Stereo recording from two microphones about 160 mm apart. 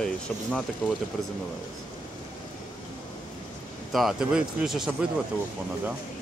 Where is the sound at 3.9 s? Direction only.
Centre (ahead or behind).